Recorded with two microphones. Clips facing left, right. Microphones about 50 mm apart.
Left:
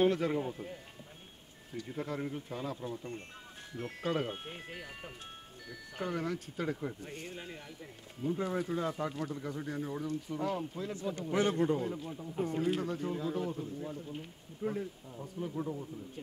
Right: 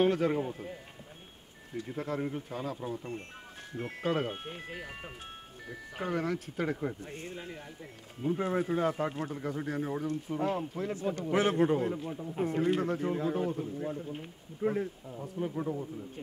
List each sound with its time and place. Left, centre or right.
0.0 s speech: centre
1.9 s speech: centre
4.7 s speech: right
7.3 s speech: centre
8.2 s speech: right
11.9 s speech: right